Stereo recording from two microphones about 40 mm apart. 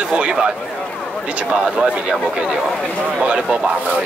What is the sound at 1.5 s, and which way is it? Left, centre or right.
Speech, right.